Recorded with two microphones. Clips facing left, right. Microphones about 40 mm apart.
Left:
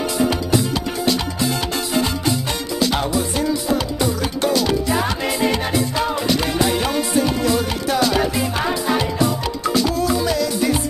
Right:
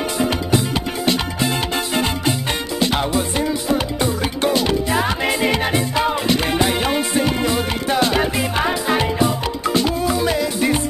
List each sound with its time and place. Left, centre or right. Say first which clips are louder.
1.0 s music: right 1 dB; right